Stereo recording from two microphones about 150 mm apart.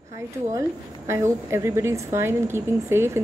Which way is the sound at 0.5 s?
20° right (ahead or behind).